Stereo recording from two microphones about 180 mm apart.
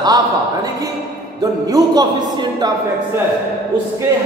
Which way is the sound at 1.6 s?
20° right (ahead or behind).